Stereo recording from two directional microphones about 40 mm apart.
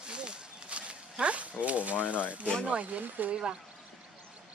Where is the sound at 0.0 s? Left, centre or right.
Right.